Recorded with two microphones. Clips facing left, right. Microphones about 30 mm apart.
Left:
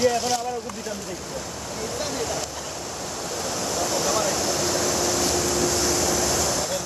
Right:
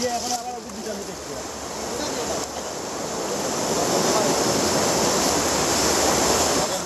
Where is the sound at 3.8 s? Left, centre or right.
Right.